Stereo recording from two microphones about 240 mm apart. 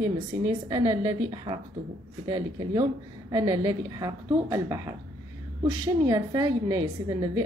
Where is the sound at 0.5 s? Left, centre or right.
Centre.